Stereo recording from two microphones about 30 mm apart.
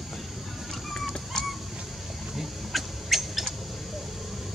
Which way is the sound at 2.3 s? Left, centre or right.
Centre.